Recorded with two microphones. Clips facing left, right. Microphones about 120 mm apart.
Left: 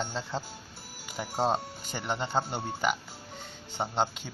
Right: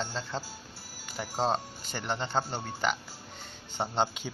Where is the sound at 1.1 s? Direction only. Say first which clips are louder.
Left 1 dB; 10° left (ahead or behind).